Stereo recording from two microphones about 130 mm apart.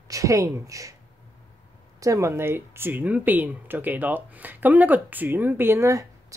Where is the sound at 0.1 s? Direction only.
25° right (ahead or behind).